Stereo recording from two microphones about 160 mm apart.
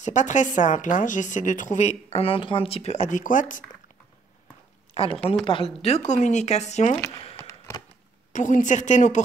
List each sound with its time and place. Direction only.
0.0 s speech: 50° left (ahead or behind)
5.1 s speech: 5° left (ahead or behind)
5.4 s speech: 35° left (ahead or behind)
7.3 s a sound: 20° left (ahead or behind)
8.3 s speech: 50° left (ahead or behind)